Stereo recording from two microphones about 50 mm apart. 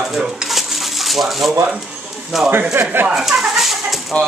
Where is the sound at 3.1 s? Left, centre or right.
Centre.